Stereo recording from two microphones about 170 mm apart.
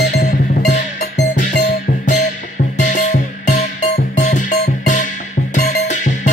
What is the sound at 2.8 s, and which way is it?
Music, 50° left (ahead or behind).